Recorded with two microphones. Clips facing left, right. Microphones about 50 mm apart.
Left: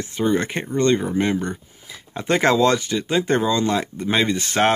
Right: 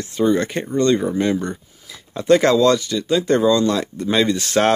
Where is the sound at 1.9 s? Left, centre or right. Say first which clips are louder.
Right 6 dB; centre.